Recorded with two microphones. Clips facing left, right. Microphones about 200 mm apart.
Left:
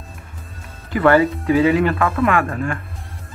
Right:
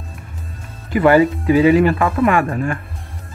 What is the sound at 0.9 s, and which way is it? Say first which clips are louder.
Speech: right 2 dB; 15° right (ahead or behind).